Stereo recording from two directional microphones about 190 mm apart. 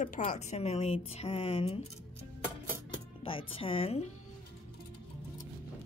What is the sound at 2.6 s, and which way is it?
Music, 10° right (ahead or behind).